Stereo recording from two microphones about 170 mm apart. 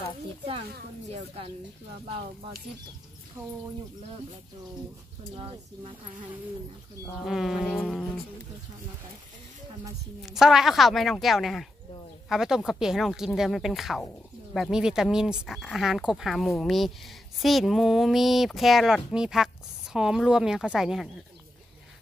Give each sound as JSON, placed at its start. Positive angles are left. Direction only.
{"t": 1.1, "sound": "speech", "side_deg": -35}
{"t": 3.4, "sound": "speech", "side_deg": -15}
{"t": 5.3, "sound": "speech", "side_deg": -35}
{"t": 7.2, "sound": "speech", "side_deg": 0}
{"t": 10.2, "sound": "speech", "side_deg": -5}